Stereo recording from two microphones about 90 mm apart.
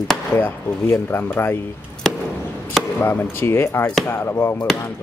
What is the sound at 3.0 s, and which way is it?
Speech, 20° left (ahead or behind).